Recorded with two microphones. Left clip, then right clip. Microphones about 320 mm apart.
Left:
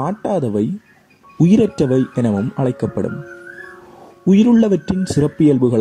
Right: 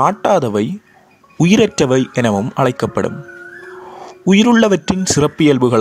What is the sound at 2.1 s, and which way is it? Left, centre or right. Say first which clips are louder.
Speech: right 4 dB; right.